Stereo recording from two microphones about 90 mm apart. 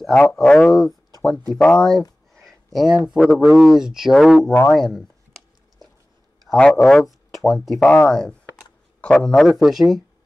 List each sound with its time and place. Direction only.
0.1 s speech: 15° left (ahead or behind)
0.7 s a sound: 45° left (ahead or behind)
1.3 s speech: 10° left (ahead or behind)
2.4 s a sound: centre (ahead or behind)
3.1 s speech: 10° right (ahead or behind); by 5.0 s 5° left (ahead or behind)
6.4 s speech: 5° left (ahead or behind)
7.8 s speech: 10° left (ahead or behind)